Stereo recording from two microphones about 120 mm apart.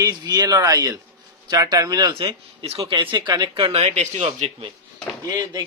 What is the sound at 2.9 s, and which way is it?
Speech, 40° right (ahead or behind).